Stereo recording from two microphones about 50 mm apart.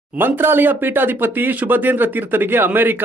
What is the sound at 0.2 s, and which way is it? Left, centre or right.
Speech, right.